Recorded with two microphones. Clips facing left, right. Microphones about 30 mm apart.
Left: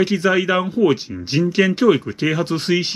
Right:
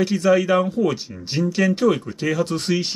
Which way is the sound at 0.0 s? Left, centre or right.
Left.